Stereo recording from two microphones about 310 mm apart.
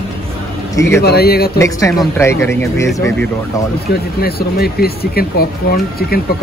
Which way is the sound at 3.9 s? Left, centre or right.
Left.